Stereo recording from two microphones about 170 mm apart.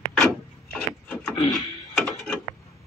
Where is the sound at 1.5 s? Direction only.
Centre (ahead or behind).